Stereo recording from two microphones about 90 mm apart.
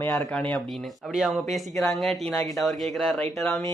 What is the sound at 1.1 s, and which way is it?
Speech, centre (ahead or behind).